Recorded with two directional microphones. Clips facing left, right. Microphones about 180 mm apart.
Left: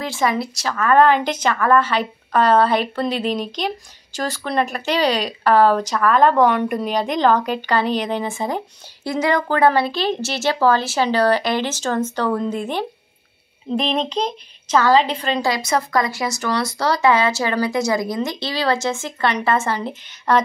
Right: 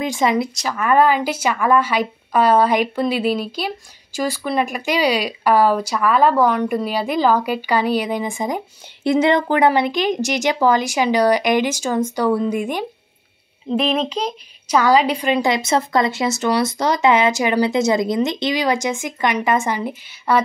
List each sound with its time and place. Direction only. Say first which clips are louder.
0.0 s speech: right 3 dB; 20° right (ahead or behind)